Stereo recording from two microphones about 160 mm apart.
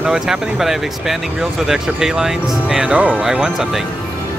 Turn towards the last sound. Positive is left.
turn(degrees=-5)  # may be behind; listen again after turning